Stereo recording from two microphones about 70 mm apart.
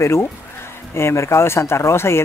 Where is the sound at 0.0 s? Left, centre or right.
Left.